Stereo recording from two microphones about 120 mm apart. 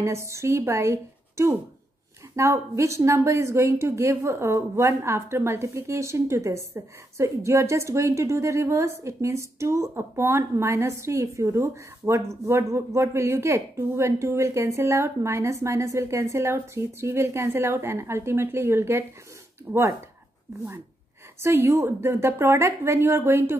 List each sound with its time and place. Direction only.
0.0 s a woman's voice: 25° right (ahead or behind)
21.4 s a woman's voice: 20° right (ahead or behind)